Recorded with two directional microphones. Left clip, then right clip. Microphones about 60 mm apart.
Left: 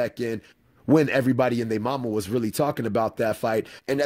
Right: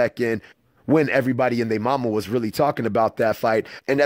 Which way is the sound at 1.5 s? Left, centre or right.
Right.